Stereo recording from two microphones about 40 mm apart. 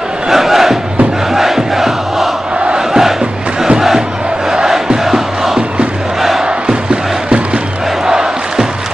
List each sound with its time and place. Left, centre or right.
0.3 s crowd: centre
4.5 s crowd: centre
7.2 s crowd: right
8.1 s crowd: centre